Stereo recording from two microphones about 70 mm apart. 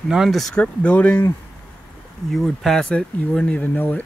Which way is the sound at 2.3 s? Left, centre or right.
Centre.